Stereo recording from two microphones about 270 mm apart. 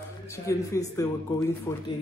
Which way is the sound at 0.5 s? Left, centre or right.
Centre.